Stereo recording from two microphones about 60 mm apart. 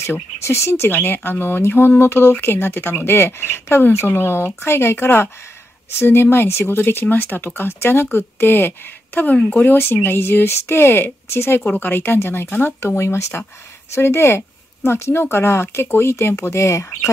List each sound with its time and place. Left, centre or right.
0.0 s speech: left
11.6 s speech: left